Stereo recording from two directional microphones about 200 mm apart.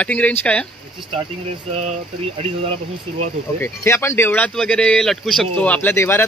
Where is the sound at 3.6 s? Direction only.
10° left (ahead or behind).